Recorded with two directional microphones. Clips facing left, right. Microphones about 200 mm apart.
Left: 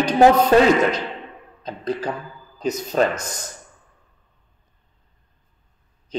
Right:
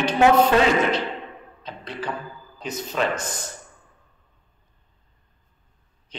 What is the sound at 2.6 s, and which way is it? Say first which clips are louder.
Speech: left 6 dB; 40° left (ahead or behind).